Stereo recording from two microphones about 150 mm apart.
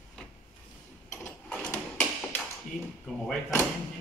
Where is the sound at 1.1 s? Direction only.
5° left (ahead or behind).